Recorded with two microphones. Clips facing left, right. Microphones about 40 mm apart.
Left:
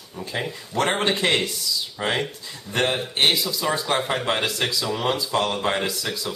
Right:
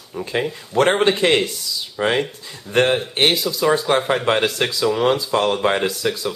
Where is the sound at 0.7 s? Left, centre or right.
Right.